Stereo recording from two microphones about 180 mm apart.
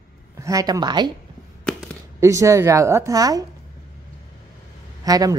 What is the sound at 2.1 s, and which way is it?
A woman's voice, 15° right (ahead or behind).